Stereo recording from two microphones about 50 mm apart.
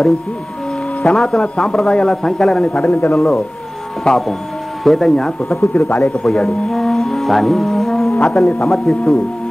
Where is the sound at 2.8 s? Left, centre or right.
Left.